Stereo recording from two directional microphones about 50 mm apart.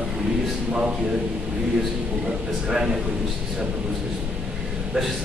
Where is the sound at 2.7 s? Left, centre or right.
Centre.